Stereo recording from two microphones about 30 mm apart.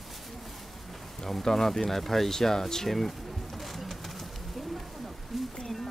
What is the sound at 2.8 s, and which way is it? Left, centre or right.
Speech, centre.